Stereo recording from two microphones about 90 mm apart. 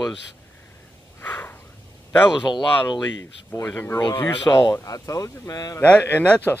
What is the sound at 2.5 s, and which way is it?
Speech, 55° left (ahead or behind).